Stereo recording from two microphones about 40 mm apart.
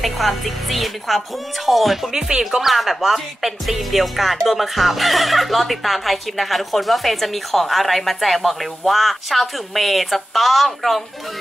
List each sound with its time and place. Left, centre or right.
0.0 s speech: centre
2.1 s music: centre
2.6 s speech: centre